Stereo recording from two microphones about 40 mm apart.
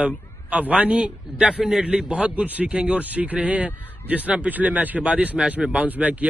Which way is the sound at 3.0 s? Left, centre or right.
Right.